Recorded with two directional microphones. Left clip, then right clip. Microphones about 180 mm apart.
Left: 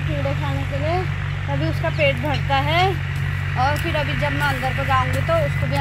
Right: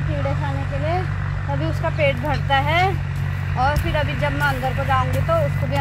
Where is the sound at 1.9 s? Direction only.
Centre (ahead or behind).